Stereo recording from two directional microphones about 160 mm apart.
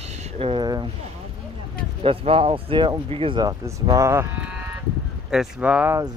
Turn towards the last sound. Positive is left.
turn(degrees=-10)  # may be behind; listen again after turning